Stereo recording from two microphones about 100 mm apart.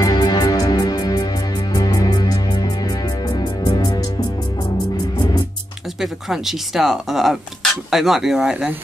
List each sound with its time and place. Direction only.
0.0 s music: 45° left (ahead or behind)
5.9 s speech: 5° right (ahead or behind)